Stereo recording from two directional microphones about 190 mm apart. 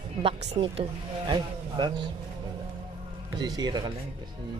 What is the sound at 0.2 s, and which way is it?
Speech, 35° right (ahead or behind).